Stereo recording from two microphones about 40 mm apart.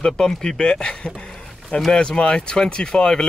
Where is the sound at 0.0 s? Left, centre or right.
Centre.